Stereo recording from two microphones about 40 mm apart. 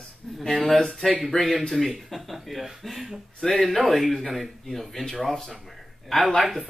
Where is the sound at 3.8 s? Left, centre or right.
Centre.